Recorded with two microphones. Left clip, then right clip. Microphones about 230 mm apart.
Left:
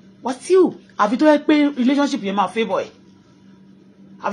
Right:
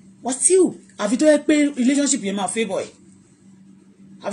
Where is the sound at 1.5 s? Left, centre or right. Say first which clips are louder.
Left 1 dB; centre.